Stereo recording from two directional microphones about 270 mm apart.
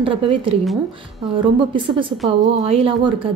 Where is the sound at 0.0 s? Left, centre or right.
Centre.